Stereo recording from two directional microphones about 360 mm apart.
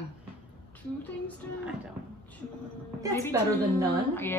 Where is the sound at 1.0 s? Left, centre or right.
Centre.